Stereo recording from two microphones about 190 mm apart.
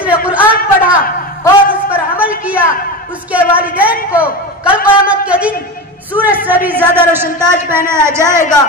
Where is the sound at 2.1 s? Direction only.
5° right (ahead or behind).